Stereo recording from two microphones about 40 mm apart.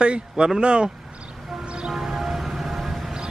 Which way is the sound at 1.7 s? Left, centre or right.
Centre.